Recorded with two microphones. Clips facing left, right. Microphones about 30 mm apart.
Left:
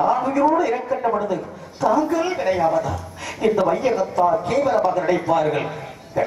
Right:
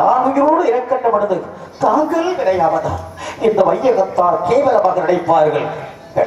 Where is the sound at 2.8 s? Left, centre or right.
Right.